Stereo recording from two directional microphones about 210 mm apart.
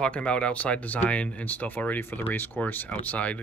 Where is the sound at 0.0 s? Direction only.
5° left (ahead or behind).